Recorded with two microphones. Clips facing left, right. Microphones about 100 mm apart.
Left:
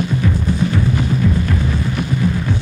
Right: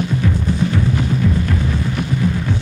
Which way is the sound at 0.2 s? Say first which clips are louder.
Even; 15° left (ahead or behind).